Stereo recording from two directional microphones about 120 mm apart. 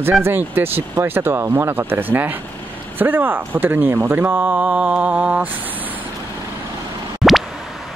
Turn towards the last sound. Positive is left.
turn(degrees=0)  # may be behind; listen again after turning